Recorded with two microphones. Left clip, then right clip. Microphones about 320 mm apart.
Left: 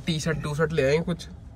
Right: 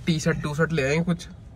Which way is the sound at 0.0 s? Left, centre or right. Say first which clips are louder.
Right 3 dB; centre.